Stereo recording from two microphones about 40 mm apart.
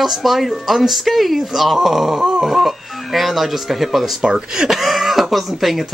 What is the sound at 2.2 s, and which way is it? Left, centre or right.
Grunt, centre.